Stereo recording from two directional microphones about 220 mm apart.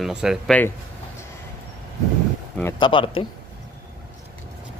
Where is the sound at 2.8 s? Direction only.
20° left (ahead or behind).